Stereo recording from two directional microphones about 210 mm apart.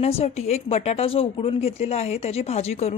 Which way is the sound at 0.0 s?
30° left (ahead or behind).